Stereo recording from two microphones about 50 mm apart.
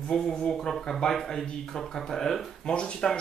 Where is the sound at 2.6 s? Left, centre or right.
Left.